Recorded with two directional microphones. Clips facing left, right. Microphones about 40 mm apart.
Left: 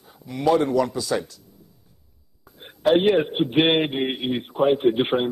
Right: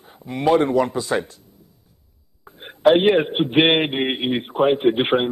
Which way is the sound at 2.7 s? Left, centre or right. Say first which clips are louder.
Right 3 dB; right.